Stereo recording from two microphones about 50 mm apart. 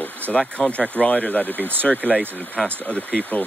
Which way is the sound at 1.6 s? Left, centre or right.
Right.